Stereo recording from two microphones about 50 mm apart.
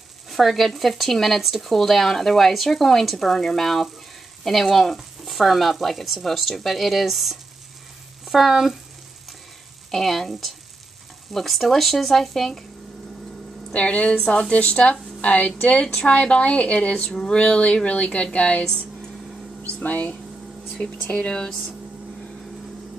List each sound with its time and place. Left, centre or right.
0.3 s speech: centre
9.8 s speech: centre
13.7 s a woman's voice: left
14.1 s speech: centre
14.5 s a woman's voice: left
19.8 s speech: left
21.1 s speech: centre